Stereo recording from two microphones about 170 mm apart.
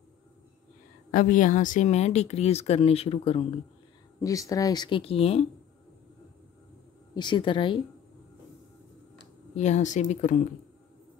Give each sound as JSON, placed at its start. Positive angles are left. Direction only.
{"t": 1.1, "sound": "speech", "side_deg": 50}
{"t": 4.2, "sound": "speech", "side_deg": 20}
{"t": 7.2, "sound": "speech", "side_deg": 25}
{"t": 9.6, "sound": "speech", "side_deg": 45}